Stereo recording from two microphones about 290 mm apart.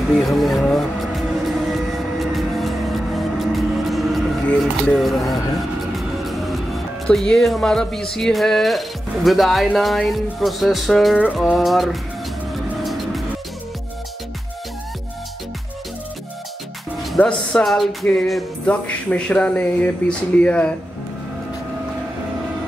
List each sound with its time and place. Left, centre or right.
0.1 s speech: centre
1.7 s music: centre
7.1 s speech: centre
12.8 s music: centre
17.0 s speech: centre